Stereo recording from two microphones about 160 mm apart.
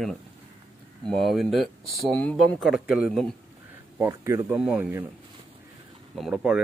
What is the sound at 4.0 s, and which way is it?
Speech, 15° right (ahead or behind).